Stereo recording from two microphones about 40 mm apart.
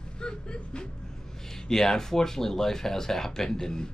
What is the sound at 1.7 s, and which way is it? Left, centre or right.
Speech, centre.